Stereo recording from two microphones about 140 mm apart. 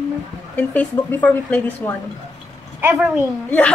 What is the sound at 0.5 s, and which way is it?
A woman's voice, 10° left (ahead or behind).